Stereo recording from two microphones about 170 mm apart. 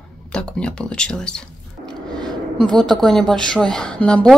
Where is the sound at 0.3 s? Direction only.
5° left (ahead or behind).